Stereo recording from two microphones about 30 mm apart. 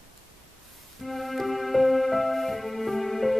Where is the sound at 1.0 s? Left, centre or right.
Centre.